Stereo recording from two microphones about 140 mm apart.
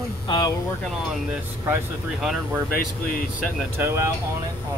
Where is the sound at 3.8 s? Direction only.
20° right (ahead or behind).